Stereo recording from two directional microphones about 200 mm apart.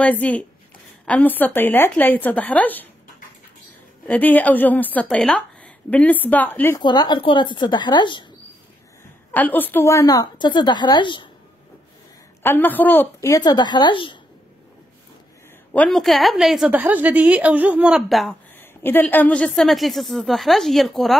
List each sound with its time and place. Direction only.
0.0 s a woman's voice: 5° left (ahead or behind)
4.1 s a woman's voice: 10° left (ahead or behind)
6.8 s a woman's voice: 20° left (ahead or behind)
9.3 s a woman's voice: 10° left (ahead or behind)
12.4 s a woman's voice: 10° left (ahead or behind)
15.7 s a woman's voice: 5° left (ahead or behind)